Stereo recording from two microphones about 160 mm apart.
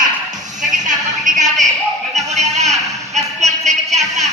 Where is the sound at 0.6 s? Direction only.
50° right (ahead or behind).